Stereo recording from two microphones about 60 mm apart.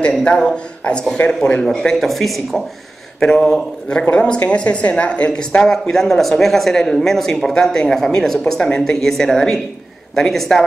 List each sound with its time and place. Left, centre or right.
0.2 s a woman's voice: centre
5.6 s speech: centre